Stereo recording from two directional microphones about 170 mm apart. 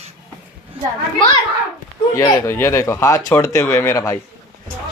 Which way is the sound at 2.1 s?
20° left (ahead or behind).